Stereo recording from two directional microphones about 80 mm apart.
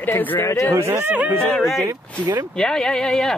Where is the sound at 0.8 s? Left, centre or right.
Right.